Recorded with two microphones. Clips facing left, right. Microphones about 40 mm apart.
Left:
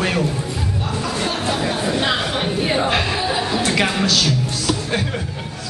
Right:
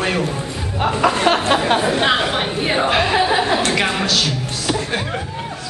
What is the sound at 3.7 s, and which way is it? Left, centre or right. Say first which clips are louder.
Speech: even; centre.